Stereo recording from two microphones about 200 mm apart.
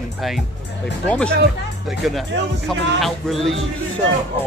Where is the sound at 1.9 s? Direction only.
Centre (ahead or behind).